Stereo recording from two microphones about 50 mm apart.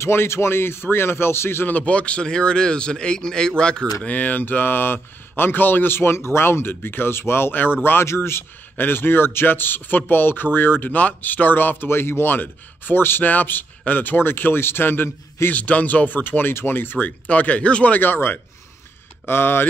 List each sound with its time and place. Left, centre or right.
0.0 s a man's voice: left
1.7 s a man's voice: left
4.1 s a man's voice: left
15.5 s a man's voice: left
17.3 s speech: left
18.0 s a man's voice: left